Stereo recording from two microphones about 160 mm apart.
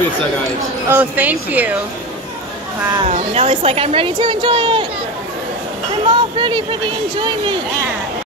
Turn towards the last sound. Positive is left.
turn(degrees=-30)  # may be behind; listen again after turning